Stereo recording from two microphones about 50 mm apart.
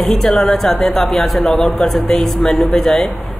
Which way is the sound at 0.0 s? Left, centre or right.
Centre.